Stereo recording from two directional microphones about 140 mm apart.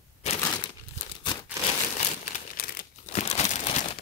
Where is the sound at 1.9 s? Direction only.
75° left (ahead or behind).